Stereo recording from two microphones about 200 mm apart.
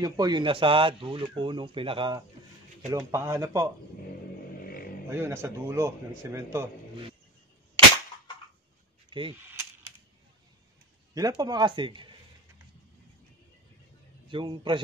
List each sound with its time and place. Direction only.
0.0 s a man's voice: 20° right (ahead or behind)
5.1 s a man's voice: 10° right (ahead or behind)
9.1 s speech: 25° right (ahead or behind)
11.1 s speech: 20° right (ahead or behind)
14.3 s speech: 25° right (ahead or behind)